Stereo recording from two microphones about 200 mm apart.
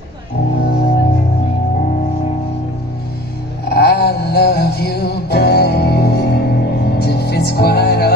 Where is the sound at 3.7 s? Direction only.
50° left (ahead or behind).